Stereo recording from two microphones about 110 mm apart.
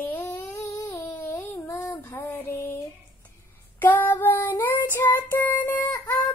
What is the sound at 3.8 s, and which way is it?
Female singing, 15° left (ahead or behind).